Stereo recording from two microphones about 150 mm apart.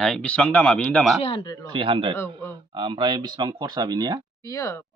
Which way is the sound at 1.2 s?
35° left (ahead or behind).